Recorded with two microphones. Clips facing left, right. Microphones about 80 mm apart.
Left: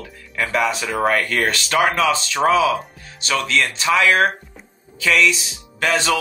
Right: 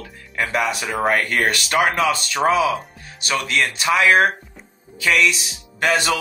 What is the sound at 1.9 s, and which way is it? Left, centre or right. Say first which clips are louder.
A man's voice: left 1 dB; centre.